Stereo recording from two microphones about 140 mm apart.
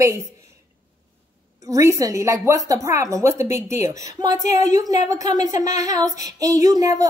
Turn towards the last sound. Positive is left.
turn(degrees=-25)  # may be behind; listen again after turning